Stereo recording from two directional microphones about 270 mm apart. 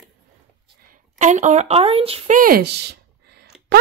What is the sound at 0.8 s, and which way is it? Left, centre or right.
Speech, right.